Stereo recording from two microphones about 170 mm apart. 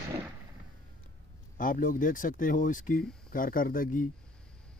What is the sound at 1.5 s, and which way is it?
Speech, 50° left (ahead or behind).